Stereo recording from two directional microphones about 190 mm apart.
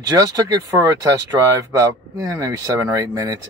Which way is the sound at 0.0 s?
20° right (ahead or behind).